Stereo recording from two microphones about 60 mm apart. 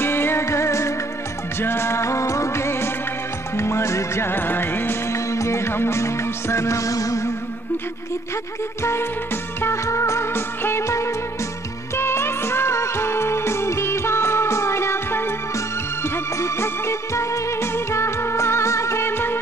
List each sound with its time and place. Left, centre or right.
0.0 s music: left
1.6 s music: left
5.1 s music: left
9.6 s music: left
11.9 s music: left
15.5 s music: left